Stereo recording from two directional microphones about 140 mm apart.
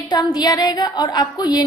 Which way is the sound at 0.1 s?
30° left (ahead or behind).